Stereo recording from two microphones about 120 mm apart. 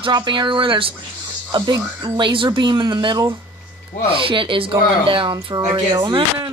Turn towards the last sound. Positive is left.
turn(degrees=-40)  # may be behind; listen again after turning